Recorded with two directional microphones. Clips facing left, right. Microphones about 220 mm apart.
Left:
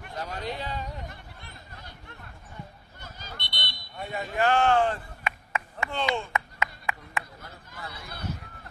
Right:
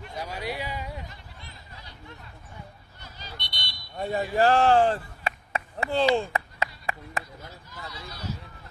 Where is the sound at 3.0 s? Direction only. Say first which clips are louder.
Even; 50° left (ahead or behind).